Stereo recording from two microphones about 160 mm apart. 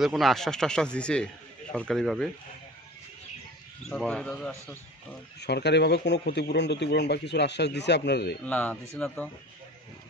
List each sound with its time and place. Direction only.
0.0 s speech: centre (ahead or behind)
3.9 s speech: 5° left (ahead or behind)
5.4 s speech: 90° left
8.5 s speech: 10° left (ahead or behind)